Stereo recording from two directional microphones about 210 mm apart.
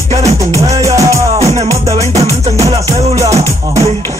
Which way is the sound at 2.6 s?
15° right (ahead or behind).